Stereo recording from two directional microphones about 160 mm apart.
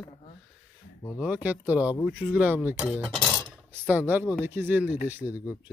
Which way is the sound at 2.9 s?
Centre (ahead or behind).